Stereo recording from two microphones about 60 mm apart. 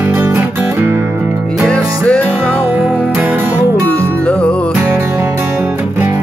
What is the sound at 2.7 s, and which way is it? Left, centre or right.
Music, right.